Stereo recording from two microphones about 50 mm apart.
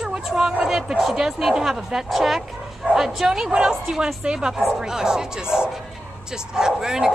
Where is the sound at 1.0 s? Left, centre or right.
Centre.